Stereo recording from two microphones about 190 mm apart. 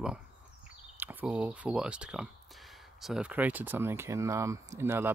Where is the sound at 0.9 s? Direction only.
10° right (ahead or behind).